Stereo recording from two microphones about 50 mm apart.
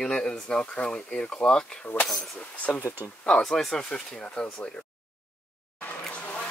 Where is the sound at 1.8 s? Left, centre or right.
Left.